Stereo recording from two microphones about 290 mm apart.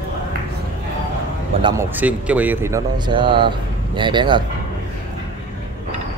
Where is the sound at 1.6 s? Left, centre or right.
Centre.